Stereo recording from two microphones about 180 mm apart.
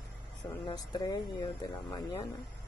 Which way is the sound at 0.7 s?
25° left (ahead or behind).